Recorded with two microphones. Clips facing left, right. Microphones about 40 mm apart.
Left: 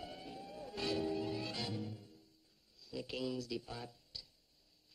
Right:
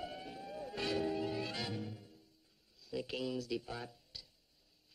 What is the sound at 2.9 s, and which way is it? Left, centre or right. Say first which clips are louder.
Speech: right 2 dB; centre.